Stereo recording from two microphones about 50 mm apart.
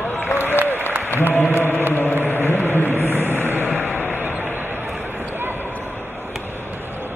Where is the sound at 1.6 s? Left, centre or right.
Left.